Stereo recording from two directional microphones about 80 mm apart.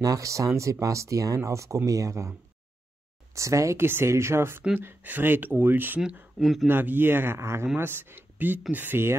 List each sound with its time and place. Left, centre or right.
0.0 s speech: right
3.3 s speech: right
6.3 s speech: centre
6.7 s speech: right